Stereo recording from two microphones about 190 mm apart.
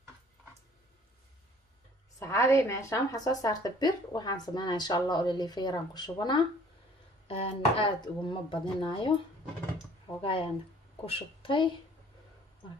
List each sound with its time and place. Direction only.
2.1 s a woman's voice: 15° left (ahead or behind)
10.2 s a woman's voice: 30° left (ahead or behind)